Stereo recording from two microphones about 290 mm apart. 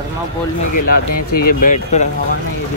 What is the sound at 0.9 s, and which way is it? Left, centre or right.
Speech, left.